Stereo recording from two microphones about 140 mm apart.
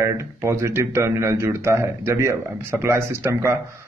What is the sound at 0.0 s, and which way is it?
A man's voice, 20° right (ahead or behind).